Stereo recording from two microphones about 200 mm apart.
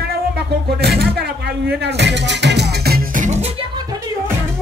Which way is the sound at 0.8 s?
55° right (ahead or behind).